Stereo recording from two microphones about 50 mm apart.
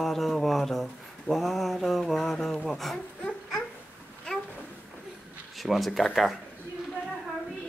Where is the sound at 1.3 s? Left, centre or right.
Centre.